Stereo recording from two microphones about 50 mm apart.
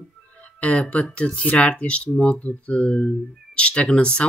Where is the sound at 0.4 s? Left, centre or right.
Left.